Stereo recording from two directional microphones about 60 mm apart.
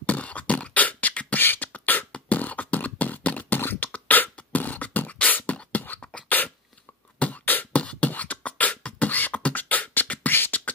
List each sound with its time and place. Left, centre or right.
0.0 s beatboxing: left